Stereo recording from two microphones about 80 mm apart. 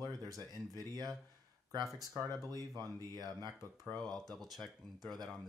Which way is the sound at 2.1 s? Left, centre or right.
Right.